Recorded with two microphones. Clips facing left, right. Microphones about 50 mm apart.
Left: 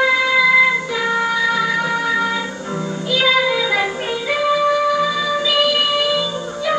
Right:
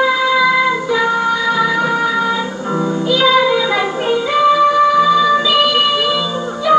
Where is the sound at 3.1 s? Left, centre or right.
Centre.